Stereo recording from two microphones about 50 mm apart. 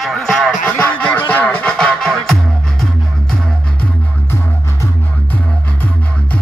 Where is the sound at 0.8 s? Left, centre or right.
Left.